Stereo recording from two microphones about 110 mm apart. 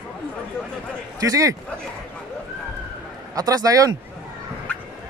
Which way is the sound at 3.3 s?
35° right (ahead or behind).